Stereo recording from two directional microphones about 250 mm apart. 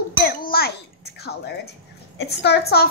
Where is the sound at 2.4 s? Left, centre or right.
Left.